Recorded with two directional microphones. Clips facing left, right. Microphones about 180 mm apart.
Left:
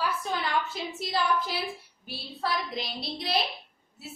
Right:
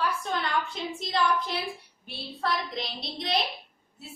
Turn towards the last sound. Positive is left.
turn(degrees=0)  # may be behind; listen again after turning